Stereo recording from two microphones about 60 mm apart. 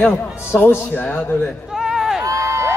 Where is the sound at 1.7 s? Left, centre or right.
Centre.